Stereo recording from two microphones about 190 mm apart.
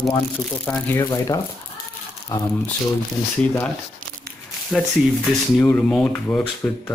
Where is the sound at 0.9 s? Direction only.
15° left (ahead or behind).